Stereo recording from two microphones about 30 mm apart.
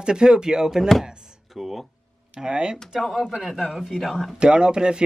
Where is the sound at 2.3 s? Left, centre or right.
Right.